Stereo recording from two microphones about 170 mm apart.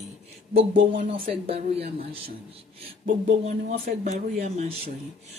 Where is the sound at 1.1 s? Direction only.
35° right (ahead or behind).